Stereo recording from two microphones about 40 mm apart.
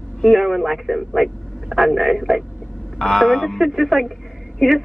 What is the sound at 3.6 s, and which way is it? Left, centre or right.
Speech, centre.